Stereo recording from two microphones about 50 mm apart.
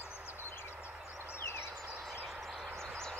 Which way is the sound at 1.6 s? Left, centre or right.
Centre.